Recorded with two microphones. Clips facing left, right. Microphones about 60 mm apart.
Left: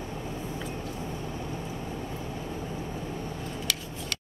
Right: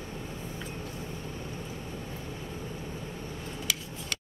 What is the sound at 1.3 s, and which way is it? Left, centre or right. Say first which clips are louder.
Vehicle: left 4 dB; left.